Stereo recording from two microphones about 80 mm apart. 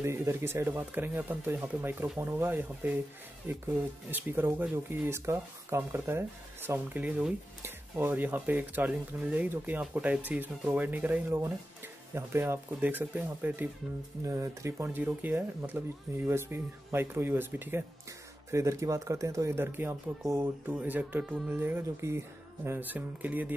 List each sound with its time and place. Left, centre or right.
0.0 s speech: right; by 7.3 s centre
7.6 s speech: right
14.2 s speech: right
15.0 s speech: right
18.5 s speech: right; by 21.3 s centre
21.5 s speech: right